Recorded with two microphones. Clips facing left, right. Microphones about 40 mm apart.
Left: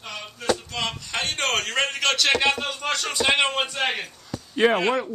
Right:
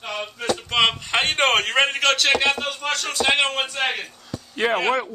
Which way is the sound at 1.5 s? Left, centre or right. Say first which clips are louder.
Right 5 dB; centre.